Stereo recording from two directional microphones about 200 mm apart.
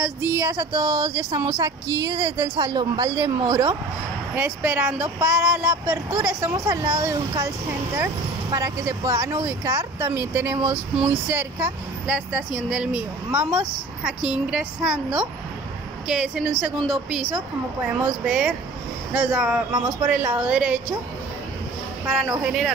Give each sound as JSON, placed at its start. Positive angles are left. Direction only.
{"t": 0.2, "sound": "a woman's voice", "side_deg": -10}
{"t": 22.0, "sound": "a woman's voice", "side_deg": -5}